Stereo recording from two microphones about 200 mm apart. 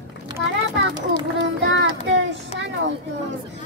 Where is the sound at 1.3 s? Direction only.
65° right (ahead or behind).